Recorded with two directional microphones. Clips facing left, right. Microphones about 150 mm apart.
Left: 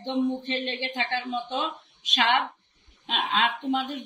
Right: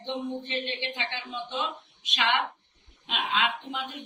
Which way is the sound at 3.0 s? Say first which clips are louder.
Left 2 dB; 40° left (ahead or behind).